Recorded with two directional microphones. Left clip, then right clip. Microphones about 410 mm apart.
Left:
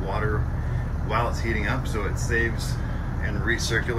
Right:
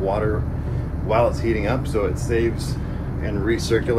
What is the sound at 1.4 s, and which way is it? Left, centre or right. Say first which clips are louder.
Speech: right 5 dB; right.